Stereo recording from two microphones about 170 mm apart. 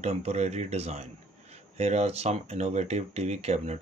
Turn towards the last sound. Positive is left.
turn(degrees=-40)  # may be behind; listen again after turning